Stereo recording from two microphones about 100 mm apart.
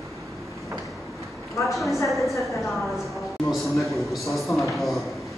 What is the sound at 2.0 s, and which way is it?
A man's voice, centre (ahead or behind).